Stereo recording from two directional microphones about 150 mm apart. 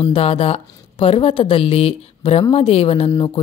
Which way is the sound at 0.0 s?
40° left (ahead or behind).